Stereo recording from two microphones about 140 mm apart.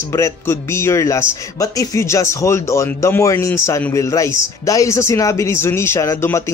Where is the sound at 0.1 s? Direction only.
20° left (ahead or behind).